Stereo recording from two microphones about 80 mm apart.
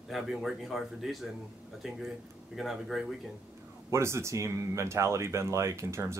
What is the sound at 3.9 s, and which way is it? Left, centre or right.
Speech, right.